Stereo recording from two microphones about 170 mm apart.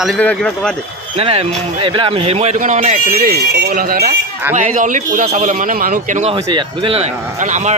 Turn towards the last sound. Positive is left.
turn(degrees=-45)  # may be behind; listen again after turning